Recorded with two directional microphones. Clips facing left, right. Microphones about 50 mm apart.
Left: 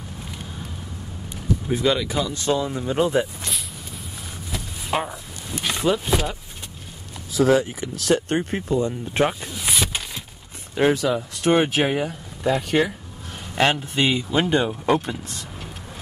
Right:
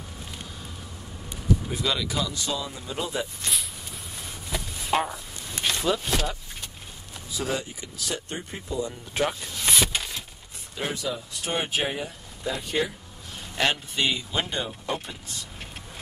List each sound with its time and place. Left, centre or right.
1.7 s speech: left
2.3 s speech: left
4.8 s a sound: centre
5.7 s speech: centre
7.3 s speech: left
8.4 s speech: left
9.3 s speech: centre
9.6 s a sound: centre
10.7 s speech: left
11.0 s speech: left
11.8 s speech: left
14.6 s speech: left